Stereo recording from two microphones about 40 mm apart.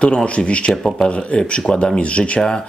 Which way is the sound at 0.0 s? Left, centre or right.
Left.